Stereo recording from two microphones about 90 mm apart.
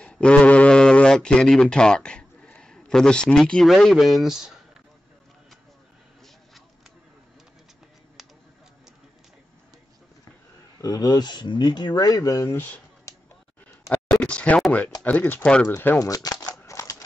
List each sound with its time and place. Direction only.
0.0 s a sound: 10° left (ahead or behind)
3.8 s speech: centre (ahead or behind)
8.2 s a sound: centre (ahead or behind)
10.8 s speech: 45° left (ahead or behind)
12.4 s speech: 20° left (ahead or behind)
14.2 s a sound: 15° left (ahead or behind)
15.0 s speech: 20° left (ahead or behind)
16.0 s speech: 45° left (ahead or behind)
16.6 s scissors: 35° left (ahead or behind)